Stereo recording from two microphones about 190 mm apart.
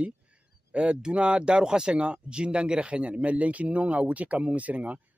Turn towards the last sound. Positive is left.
turn(degrees=-5)  # may be behind; listen again after turning